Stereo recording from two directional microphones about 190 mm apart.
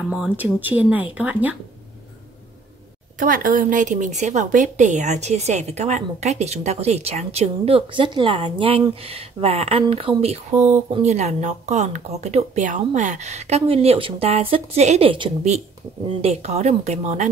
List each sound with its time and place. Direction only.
0.1 s speech: 5° right (ahead or behind)
3.2 s a woman's voice: 45° right (ahead or behind)